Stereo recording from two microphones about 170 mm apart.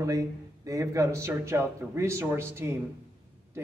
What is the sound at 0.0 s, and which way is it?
A man's voice, 20° right (ahead or behind).